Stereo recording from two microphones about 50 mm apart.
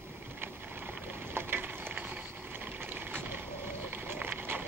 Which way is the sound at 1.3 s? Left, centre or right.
Right.